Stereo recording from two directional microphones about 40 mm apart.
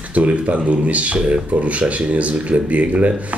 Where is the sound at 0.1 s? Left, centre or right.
Right.